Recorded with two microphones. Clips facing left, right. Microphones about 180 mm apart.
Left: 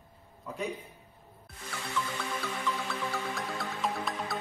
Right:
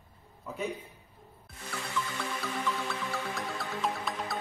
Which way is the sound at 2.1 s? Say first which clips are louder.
Even; centre (ahead or behind).